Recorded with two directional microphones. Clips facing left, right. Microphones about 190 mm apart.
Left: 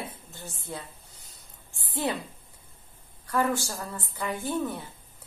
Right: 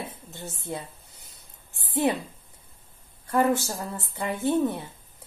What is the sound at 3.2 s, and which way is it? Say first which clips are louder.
A woman's voice: right 4 dB; 25° right (ahead or behind).